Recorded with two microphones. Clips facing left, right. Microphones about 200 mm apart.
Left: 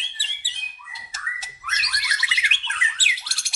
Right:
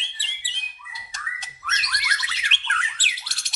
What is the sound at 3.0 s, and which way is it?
Bird, 10° left (ahead or behind).